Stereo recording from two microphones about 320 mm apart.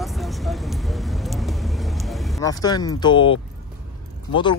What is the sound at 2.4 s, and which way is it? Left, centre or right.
Speech, centre.